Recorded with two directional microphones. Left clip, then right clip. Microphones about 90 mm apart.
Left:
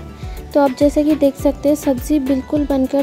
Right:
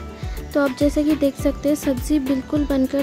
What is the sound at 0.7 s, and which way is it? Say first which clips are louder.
Speech: left 5 dB; 30° left (ahead or behind).